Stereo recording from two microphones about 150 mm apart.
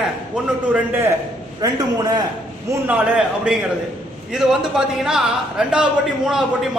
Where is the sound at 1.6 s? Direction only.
25° right (ahead or behind).